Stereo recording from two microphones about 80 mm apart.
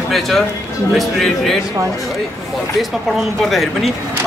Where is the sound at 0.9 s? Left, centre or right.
Centre.